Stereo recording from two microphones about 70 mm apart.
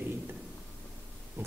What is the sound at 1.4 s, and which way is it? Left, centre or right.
Speech, right.